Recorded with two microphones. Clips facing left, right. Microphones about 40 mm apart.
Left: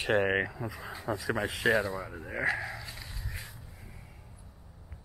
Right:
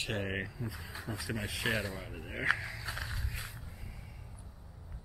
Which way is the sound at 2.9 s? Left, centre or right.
Right.